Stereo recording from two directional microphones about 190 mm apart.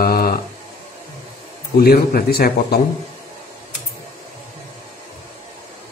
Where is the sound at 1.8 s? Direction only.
50° left (ahead or behind).